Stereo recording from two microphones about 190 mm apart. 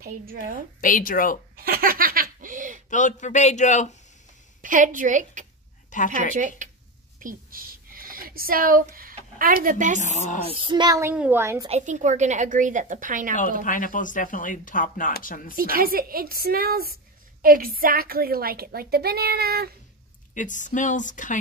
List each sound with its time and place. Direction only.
0.0 s a woman's voice: 50° right (ahead or behind)
0.7 s speech: 45° left (ahead or behind)
1.6 s snicker: 50° right (ahead or behind)
2.9 s a man's voice: 40° left (ahead or behind)
4.6 s a woman's voice: 45° right (ahead or behind)
5.9 s a woman's voice: 45° left (ahead or behind)
6.6 s a sound: 40° right (ahead or behind)
9.6 s a woman's voice: 45° right (ahead or behind)
10.0 s a man's voice: 40° left (ahead or behind)
10.5 s a child's voice: 25° right (ahead or behind)
11.6 s a woman's voice: 35° right (ahead or behind)
13.7 s speech: 45° left (ahead or behind)
15.5 s a woman's voice: 50° right (ahead or behind)
20.3 s a man's voice: 40° left (ahead or behind)